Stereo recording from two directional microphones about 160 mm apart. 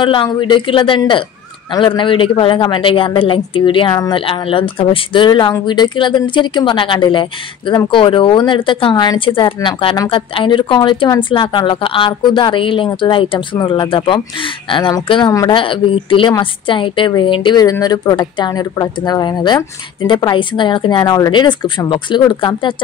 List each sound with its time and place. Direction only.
0.0 s a woman's voice: 30° left (ahead or behind)